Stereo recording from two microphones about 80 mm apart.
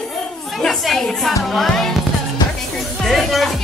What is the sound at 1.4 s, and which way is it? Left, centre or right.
Music, centre.